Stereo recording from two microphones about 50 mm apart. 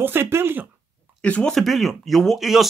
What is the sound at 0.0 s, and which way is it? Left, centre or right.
Speech, right.